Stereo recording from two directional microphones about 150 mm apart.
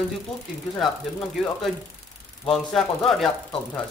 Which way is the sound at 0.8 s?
Centre (ahead or behind).